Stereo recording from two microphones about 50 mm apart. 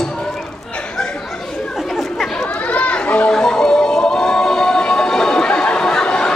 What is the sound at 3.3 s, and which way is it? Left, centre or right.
Music, centre.